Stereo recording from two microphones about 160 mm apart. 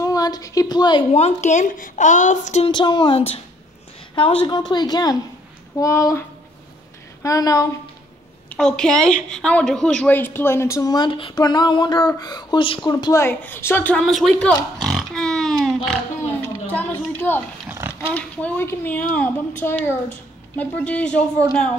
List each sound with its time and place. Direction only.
0.0 s a sound: 25° left (ahead or behind)
1.1 s a woman's voice: 45° left (ahead or behind)
2.6 s a woman's voice: 30° left (ahead or behind)
7.2 s a woman's voice: 20° left (ahead or behind)
8.5 s a woman's voice: 5° left (ahead or behind)
17.6 s a sound: 15° right (ahead or behind)
18.0 s a woman's voice: 10° left (ahead or behind)